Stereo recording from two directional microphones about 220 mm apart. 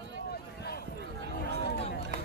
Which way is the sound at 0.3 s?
45° left (ahead or behind).